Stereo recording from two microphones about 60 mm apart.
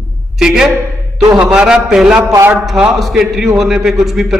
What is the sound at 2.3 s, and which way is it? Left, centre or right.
Speech, right.